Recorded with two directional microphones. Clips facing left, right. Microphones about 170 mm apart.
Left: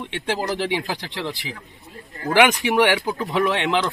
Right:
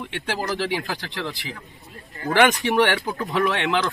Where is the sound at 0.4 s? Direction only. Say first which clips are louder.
Even; 20° left (ahead or behind).